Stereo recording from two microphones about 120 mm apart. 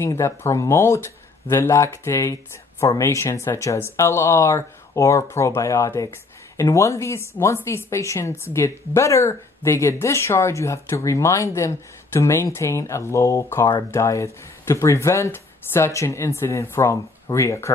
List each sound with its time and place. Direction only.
0.0 s speech: 25° left (ahead or behind)